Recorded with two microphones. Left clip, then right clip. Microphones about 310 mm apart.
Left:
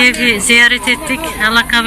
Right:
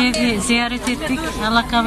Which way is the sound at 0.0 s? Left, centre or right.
Centre.